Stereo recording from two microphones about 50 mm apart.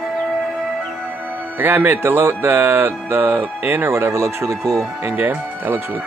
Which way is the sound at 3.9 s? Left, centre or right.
Right.